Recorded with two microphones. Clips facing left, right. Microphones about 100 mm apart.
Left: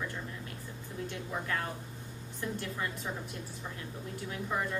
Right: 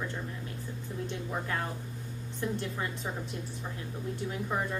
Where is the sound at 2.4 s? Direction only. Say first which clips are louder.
Right 3 dB; 25° right (ahead or behind).